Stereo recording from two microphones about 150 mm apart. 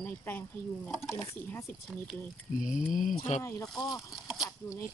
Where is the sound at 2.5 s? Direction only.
60° left (ahead or behind).